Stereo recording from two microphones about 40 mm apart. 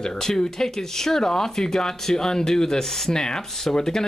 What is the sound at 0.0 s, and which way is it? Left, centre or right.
Speech, centre.